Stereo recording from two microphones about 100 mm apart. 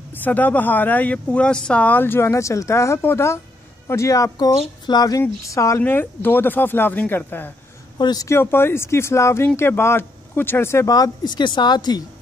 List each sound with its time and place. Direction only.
0.1 s speech: 15° left (ahead or behind); by 5.2 s 40° left (ahead or behind)
5.2 s speech: 30° left (ahead or behind)
8.0 s speech: 40° left (ahead or behind)
8.3 s speech: 25° left (ahead or behind); by 12.0 s 45° left (ahead or behind)